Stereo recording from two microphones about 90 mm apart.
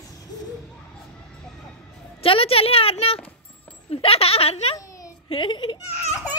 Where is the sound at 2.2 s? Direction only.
90° left.